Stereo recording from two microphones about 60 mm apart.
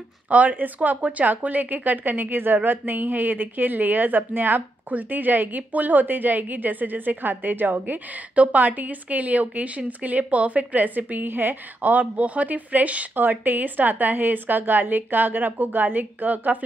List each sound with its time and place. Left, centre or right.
0.3 s speech: right